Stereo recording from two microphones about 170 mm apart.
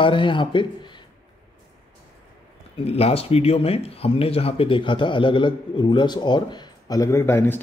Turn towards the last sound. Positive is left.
turn(degrees=15)  # may be behind; listen again after turning